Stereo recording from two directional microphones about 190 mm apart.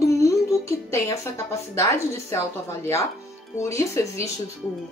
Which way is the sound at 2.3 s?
15° left (ahead or behind).